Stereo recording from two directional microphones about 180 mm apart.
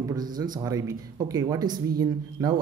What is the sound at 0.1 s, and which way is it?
Speech, 20° right (ahead or behind).